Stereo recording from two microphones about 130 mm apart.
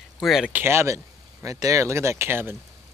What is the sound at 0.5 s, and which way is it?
Speech, 20° right (ahead or behind).